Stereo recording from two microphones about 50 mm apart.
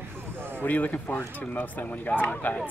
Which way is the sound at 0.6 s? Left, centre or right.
Left.